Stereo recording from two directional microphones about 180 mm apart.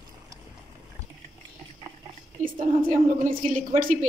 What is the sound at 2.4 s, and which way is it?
A woman's voice, 50° right (ahead or behind).